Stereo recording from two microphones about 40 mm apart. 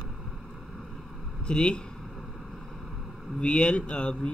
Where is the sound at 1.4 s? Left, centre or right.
Left.